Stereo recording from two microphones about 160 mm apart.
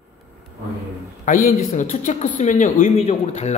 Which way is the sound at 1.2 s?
55° left (ahead or behind).